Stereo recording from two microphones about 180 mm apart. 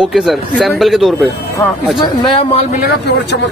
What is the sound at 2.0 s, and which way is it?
Speech, 30° left (ahead or behind).